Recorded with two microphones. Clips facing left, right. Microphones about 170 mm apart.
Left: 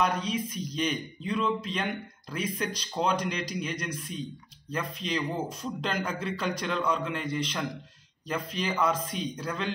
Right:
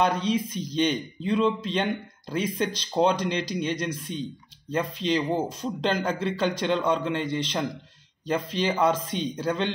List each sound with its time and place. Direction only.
0.0 s speech: 30° right (ahead or behind)